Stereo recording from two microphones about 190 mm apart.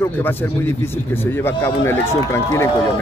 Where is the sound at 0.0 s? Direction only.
10° left (ahead or behind).